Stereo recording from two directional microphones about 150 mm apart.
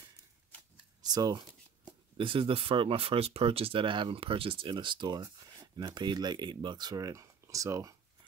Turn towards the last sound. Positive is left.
turn(degrees=-20)  # may be behind; listen again after turning